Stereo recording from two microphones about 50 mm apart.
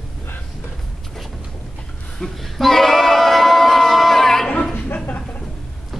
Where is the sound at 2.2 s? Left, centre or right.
Centre.